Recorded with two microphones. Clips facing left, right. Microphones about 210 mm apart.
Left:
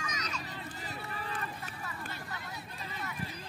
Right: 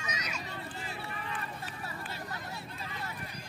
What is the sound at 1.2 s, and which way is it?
Vehicle, 35° left (ahead or behind).